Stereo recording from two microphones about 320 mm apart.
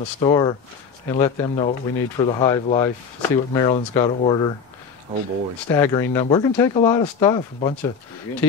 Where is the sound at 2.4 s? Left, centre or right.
Centre.